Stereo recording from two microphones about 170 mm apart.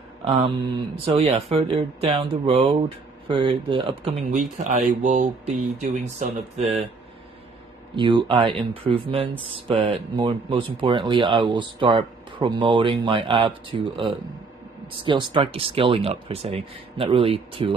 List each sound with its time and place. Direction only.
0.2 s speech: 30° right (ahead or behind)
7.9 s speech: 30° right (ahead or behind)